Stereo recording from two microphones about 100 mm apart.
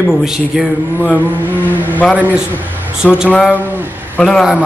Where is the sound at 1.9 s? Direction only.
15° left (ahead or behind).